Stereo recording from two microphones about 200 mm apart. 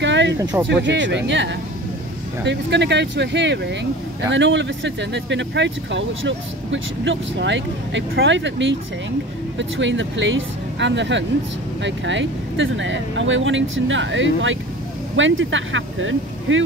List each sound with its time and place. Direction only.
0.0 s a sound: 65° right (ahead or behind)
0.4 s speech: 10° right (ahead or behind)
0.8 s speech: 65° right (ahead or behind)